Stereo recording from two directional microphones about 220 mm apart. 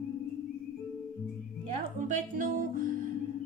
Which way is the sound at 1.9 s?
35° right (ahead or behind).